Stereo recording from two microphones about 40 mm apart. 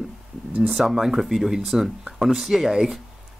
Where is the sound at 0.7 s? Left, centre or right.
Centre.